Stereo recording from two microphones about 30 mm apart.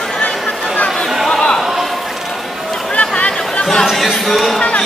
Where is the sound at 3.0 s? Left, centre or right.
Left.